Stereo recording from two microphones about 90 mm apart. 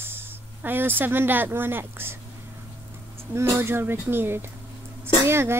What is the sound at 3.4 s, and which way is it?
Speech, 30° right (ahead or behind).